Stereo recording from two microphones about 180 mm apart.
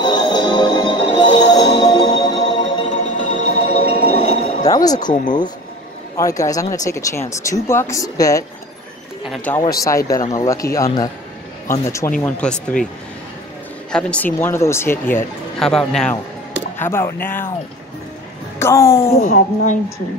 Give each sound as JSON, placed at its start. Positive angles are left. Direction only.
{"t": 0.0, "sound": "music", "side_deg": 25}
{"t": 2.6, "sound": "music", "side_deg": 40}
{"t": 4.6, "sound": "speech", "side_deg": 20}
{"t": 6.1, "sound": "speech", "side_deg": 20}
{"t": 9.2, "sound": "speech", "side_deg": 5}
{"t": 9.8, "sound": "a man's voice", "side_deg": 15}
{"t": 13.9, "sound": "speech", "side_deg": 10}
{"t": 18.6, "sound": "speech", "side_deg": 15}
{"t": 19.1, "sound": "speech", "side_deg": 45}